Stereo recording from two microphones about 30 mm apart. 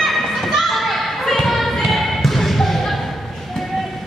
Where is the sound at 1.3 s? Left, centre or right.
Centre.